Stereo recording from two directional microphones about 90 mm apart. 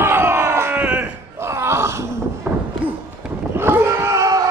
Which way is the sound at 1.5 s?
30° right (ahead or behind).